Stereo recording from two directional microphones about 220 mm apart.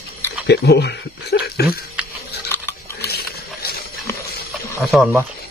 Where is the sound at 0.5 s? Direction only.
50° left (ahead or behind).